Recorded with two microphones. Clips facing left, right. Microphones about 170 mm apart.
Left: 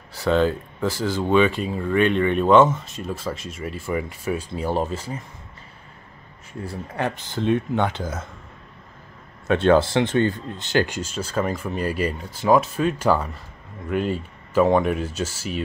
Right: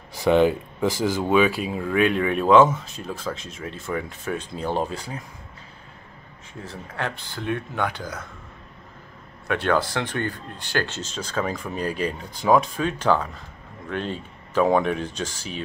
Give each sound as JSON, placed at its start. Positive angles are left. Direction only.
{"t": 0.1, "sound": "speech", "side_deg": -15}
{"t": 6.6, "sound": "speech", "side_deg": 15}
{"t": 9.5, "sound": "speech", "side_deg": 25}